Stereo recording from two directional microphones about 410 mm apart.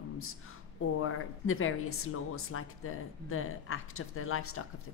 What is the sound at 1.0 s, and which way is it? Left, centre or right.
Speech, left.